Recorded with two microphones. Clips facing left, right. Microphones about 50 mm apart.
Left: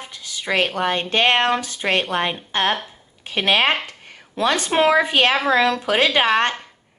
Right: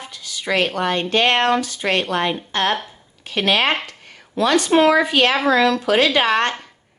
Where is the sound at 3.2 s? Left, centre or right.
Centre.